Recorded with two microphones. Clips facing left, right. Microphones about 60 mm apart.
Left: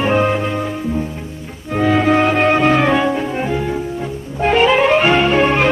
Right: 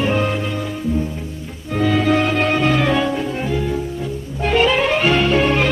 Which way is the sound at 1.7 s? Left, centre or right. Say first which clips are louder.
Left 3 dB; left.